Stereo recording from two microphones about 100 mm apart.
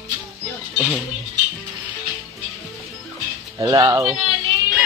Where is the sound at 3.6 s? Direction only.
40° right (ahead or behind).